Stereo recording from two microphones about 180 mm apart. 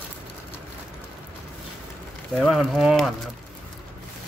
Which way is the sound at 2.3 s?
Centre (ahead or behind).